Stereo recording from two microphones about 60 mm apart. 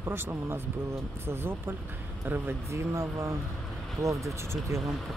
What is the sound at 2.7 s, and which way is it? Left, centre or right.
Speech, right.